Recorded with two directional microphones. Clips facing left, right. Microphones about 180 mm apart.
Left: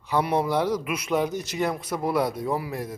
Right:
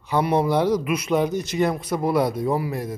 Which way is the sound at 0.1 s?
5° left (ahead or behind).